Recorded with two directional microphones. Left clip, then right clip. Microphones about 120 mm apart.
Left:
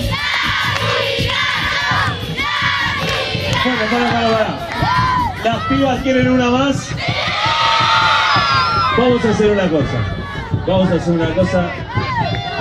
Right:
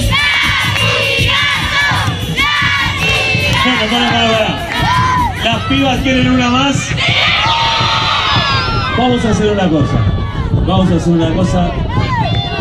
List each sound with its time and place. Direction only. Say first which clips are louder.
0.7 s music: right 4 dB; 20° left (ahead or behind)
1.2 s music: right 4 dB; 35° left (ahead or behind)
3.4 s a sound: right 5 dB; 35° left (ahead or behind)
3.8 s speech: right 3 dB; 20° left (ahead or behind)
4.8 s music: right 2 dB; 30° left (ahead or behind)
7.1 s a sound: right 5 dB; 45° left (ahead or behind)